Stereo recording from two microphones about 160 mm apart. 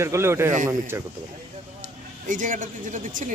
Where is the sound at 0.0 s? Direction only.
15° right (ahead or behind).